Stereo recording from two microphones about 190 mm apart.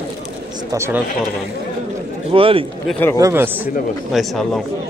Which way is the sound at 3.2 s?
15° right (ahead or behind).